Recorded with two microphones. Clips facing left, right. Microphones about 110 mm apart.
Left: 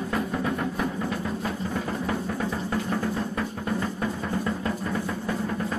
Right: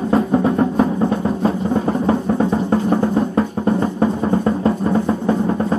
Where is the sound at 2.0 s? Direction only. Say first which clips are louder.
Right 11 dB; 35° right (ahead or behind).